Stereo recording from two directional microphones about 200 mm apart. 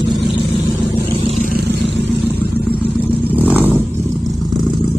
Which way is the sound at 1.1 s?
30° right (ahead or behind).